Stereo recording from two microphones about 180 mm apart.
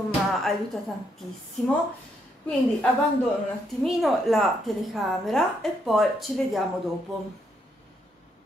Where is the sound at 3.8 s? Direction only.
Centre (ahead or behind).